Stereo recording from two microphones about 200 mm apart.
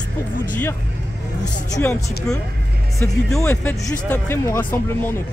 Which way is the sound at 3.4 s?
10° left (ahead or behind).